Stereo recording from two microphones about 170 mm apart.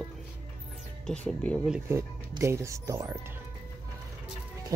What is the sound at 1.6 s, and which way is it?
Speech, 10° right (ahead or behind).